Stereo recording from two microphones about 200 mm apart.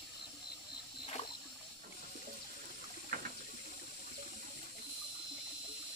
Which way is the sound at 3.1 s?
45° right (ahead or behind).